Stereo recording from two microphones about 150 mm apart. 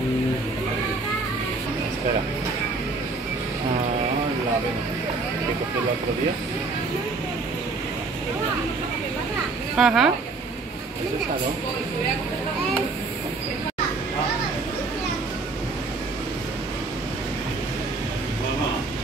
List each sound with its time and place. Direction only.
9.8 s speech: centre (ahead or behind)